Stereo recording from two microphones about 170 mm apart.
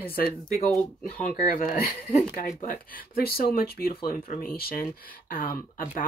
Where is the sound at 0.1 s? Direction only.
60° left (ahead or behind).